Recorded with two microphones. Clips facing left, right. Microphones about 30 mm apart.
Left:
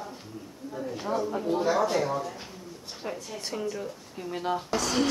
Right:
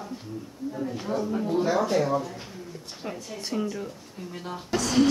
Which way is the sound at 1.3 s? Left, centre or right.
Centre.